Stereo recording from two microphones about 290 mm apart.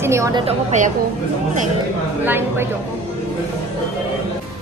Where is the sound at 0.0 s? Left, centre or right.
Centre.